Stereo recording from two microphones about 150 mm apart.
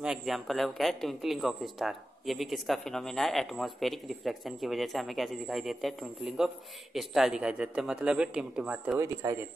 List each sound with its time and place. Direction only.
0.0 s speech: centre (ahead or behind)
8.9 s speech: 20° right (ahead or behind)